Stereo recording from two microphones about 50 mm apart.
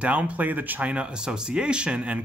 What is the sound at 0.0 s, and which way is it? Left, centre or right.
Speech, right.